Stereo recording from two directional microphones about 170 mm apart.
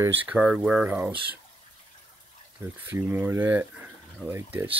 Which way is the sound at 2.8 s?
10° right (ahead or behind).